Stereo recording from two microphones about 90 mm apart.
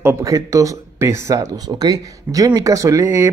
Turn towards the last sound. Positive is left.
turn(degrees=-35)  # may be behind; listen again after turning